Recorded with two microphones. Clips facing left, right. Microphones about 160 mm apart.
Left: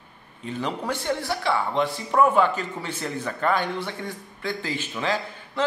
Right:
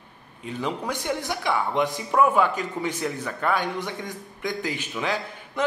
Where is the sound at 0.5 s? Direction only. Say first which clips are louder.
Left 1 dB; 10° right (ahead or behind).